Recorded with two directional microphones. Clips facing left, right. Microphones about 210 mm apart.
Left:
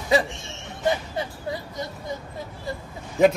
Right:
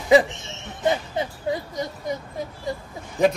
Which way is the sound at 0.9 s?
20° right (ahead or behind).